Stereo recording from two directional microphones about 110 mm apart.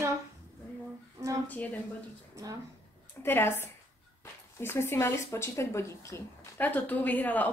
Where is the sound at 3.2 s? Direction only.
20° left (ahead or behind).